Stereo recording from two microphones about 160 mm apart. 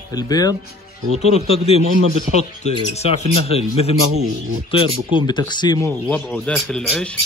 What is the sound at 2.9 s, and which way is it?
A man's voice, 40° left (ahead or behind).